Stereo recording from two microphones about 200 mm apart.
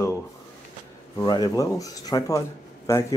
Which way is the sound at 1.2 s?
20° left (ahead or behind).